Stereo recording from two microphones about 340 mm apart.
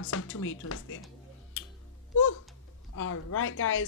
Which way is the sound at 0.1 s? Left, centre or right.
Left.